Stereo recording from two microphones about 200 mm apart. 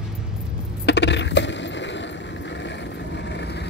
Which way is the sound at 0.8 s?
60° left (ahead or behind).